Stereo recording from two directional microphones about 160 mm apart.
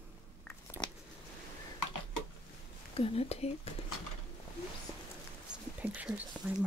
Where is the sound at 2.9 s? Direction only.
40° left (ahead or behind).